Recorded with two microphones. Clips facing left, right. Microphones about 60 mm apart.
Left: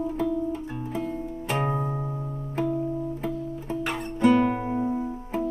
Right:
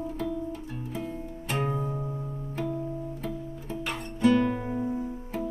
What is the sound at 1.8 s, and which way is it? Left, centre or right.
Music, left.